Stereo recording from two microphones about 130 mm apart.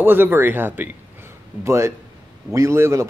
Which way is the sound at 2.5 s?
20° right (ahead or behind).